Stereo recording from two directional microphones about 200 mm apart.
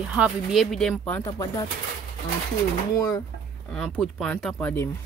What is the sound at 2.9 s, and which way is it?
Speech, 15° left (ahead or behind).